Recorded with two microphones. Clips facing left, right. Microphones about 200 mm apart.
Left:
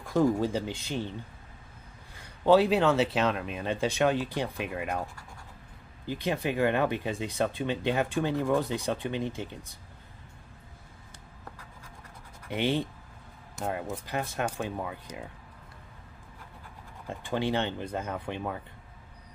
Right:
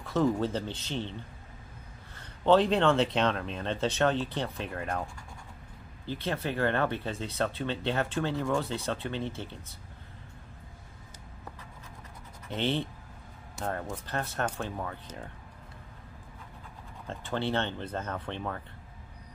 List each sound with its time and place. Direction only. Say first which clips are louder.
0.0 s speech: left 2 dB; 10° left (ahead or behind)
2.1 s speech: left 2 dB; 10° left (ahead or behind)
12.4 s speech: left 2 dB; 10° left (ahead or behind)
17.1 s speech: left 2 dB; 15° left (ahead or behind)